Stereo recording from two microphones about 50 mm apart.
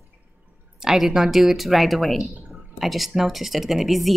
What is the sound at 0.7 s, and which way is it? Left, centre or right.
Speech, centre.